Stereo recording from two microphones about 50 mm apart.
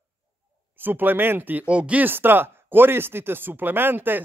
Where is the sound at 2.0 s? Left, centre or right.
Right.